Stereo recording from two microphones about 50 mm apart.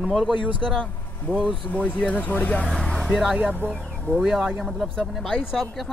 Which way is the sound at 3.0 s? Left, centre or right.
Centre.